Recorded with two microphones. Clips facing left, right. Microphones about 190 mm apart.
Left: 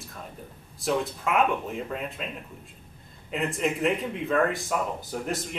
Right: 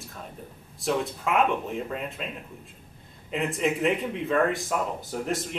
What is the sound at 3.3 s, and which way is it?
Speech, centre (ahead or behind).